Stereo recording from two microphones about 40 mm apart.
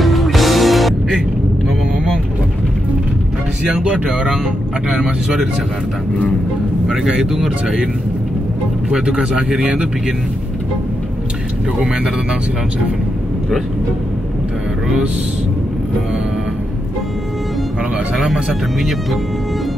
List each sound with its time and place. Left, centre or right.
0.0 s music: centre
3.7 s speech: right
4.1 s speech: centre
6.9 s speech: centre
8.9 s speech: right
18.1 s speech: centre